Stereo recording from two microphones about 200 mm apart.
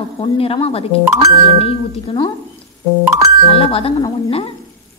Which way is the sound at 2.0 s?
20° left (ahead or behind).